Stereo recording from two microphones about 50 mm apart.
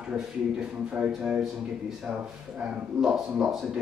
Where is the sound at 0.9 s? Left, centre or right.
Centre.